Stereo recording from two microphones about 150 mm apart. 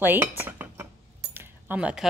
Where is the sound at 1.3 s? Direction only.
10° right (ahead or behind).